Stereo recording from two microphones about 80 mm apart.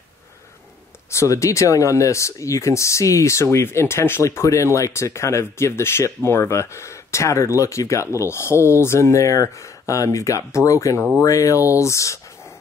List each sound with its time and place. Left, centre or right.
1.1 s speech: left